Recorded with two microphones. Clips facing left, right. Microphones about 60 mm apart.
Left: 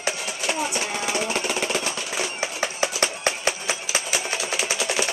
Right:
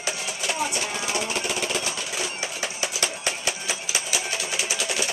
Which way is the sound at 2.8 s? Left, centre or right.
Left.